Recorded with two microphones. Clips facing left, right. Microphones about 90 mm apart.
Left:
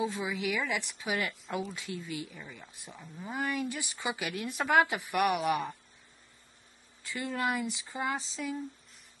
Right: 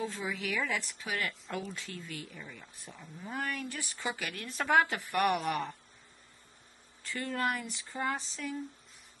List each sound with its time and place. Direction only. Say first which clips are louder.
0.0 s speech: left 4 dB; 15° left (ahead or behind)
5.1 s speech: left 1 dB; 5° left (ahead or behind)
7.0 s speech: even; 15° left (ahead or behind)